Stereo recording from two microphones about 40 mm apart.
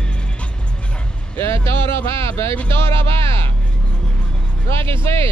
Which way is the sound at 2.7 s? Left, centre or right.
Left.